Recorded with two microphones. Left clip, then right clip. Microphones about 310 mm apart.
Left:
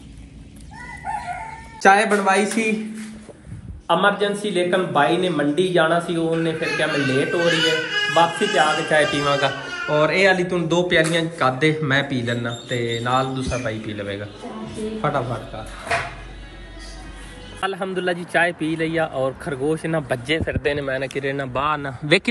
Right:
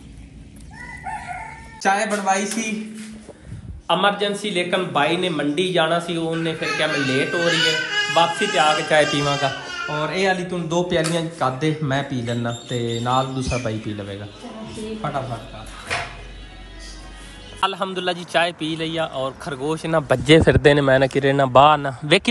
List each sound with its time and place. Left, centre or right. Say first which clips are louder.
1.0 s chicken: left 3 dB; centre
3.8 s a man's voice: left 1 dB; centre
8.9 s speech: even; centre
15.0 s a man's voice: left 4 dB; centre
17.6 s speech: right 2 dB; centre
20.2 s a man's voice: right 14 dB; right
20.6 s speech: right 8 dB; right
21.3 s speech: right 10 dB; centre